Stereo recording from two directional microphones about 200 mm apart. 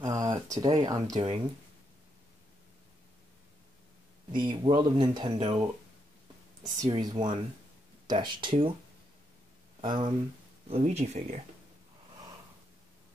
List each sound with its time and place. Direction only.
0.0 s speech: 20° right (ahead or behind)
4.3 s speech: 25° right (ahead or behind)
6.6 s speech: 20° right (ahead or behind)
9.8 s speech: 25° right (ahead or behind)